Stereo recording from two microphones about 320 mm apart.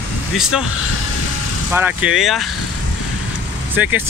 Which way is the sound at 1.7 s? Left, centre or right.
Centre.